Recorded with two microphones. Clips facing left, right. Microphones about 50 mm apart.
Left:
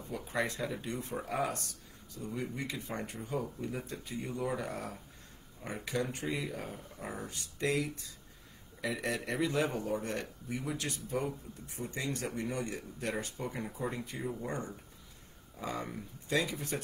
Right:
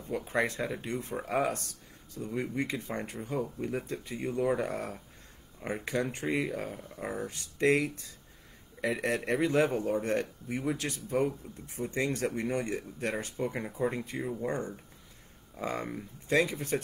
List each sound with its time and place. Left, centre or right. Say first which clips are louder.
0.3 s a man's voice: right 3 dB; right
2.1 s a man's voice: right 5 dB; right
6.5 s a man's voice: right 5 dB; right